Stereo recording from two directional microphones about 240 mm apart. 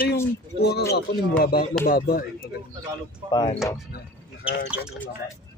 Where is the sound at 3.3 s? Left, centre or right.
Centre.